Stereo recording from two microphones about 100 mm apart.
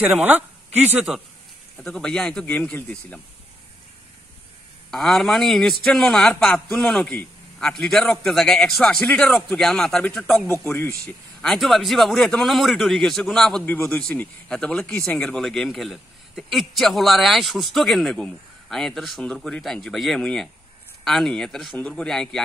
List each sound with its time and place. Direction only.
0.0 s speech: 15° right (ahead or behind)
1.1 s speech: 5° right (ahead or behind)
2.4 s speech: 15° left (ahead or behind)
4.9 s speech: 5° left (ahead or behind)